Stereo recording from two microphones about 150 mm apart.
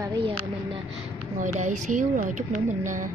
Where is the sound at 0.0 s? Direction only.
30° right (ahead or behind).